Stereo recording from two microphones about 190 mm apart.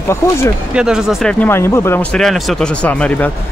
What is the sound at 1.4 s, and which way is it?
Speech, 15° left (ahead or behind).